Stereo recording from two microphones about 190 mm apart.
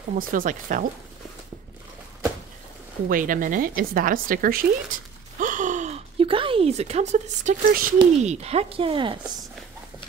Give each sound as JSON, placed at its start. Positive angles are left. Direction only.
{"t": 0.2, "sound": "speech", "side_deg": -45}
{"t": 3.1, "sound": "speech", "side_deg": -45}